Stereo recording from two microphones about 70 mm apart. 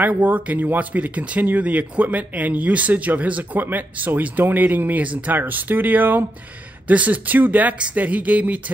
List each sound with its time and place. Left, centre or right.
0.0 s speech: right